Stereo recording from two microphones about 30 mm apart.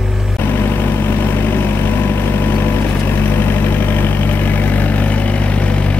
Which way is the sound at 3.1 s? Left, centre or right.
Left.